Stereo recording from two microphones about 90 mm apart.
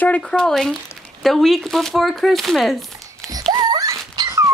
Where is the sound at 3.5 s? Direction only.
50° right (ahead or behind).